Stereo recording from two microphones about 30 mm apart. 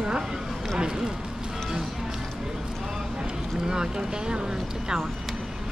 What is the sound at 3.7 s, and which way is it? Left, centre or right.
Speech, right.